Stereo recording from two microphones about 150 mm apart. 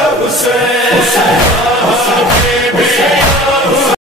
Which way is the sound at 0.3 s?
Centre (ahead or behind).